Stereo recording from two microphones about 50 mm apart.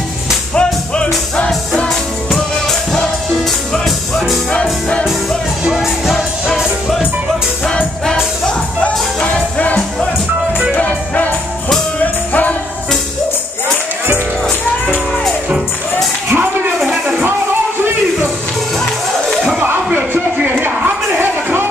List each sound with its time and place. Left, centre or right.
0.6 s music: centre
1.9 s music: centre
5.8 s music: centre
7.6 s music: centre
8.8 s music: left
10.8 s music: left
19.9 s a sound: right
21.2 s music: right